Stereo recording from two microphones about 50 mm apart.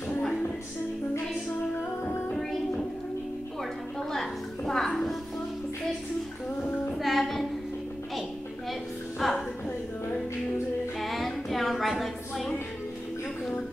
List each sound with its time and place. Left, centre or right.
1.8 s music: left
4.1 s music: centre
7.0 s music: centre
9.2 s music: centre
11.0 s a sound: centre